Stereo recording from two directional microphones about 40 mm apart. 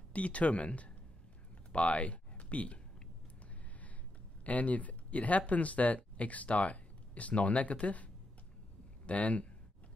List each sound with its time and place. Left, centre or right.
0.1 s speech: left
4.5 s speech: left